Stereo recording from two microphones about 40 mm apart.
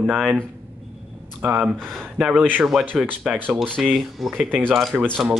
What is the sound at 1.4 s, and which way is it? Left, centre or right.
Speech, right.